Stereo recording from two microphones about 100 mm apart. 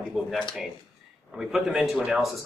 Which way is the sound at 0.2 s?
Centre (ahead or behind).